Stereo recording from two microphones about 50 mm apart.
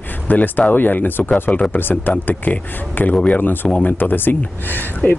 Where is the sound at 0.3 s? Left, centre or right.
Left.